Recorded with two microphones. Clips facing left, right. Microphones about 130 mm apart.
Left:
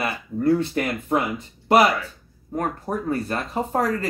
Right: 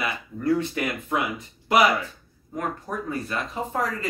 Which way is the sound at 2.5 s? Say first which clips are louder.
Left 4 dB; 40° left (ahead or behind).